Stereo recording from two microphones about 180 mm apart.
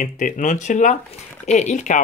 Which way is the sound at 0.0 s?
45° left (ahead or behind).